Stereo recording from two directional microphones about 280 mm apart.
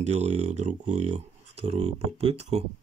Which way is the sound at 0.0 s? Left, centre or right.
Right.